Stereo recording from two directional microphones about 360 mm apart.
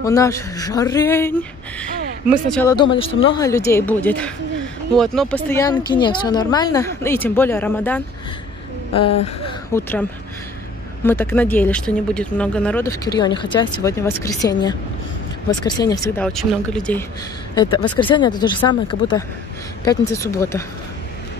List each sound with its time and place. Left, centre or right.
0.0 s speech: centre
2.5 s speech: centre
9.8 s speech: centre
11.1 s speech: centre